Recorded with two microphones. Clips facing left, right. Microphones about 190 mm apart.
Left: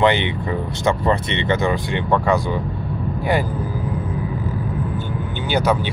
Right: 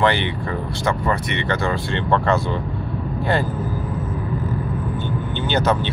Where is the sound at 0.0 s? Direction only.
20° left (ahead or behind).